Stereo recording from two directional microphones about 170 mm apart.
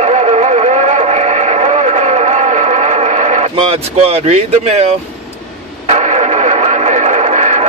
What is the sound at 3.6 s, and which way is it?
Speech, 35° right (ahead or behind).